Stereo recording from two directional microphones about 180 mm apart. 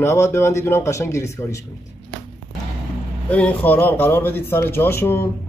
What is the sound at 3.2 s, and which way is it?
Speech, 10° left (ahead or behind).